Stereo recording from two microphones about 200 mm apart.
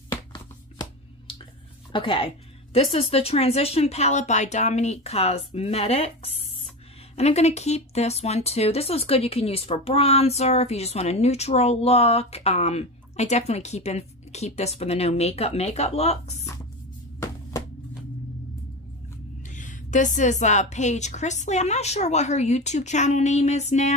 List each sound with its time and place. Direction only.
0.3 s a sound: 20° left (ahead or behind)
1.9 s speech: 25° left (ahead or behind)
17.2 s music: 15° left (ahead or behind)
19.4 s speech: 40° left (ahead or behind)